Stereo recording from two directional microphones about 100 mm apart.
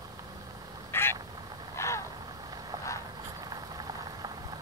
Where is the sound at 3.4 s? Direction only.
40° right (ahead or behind).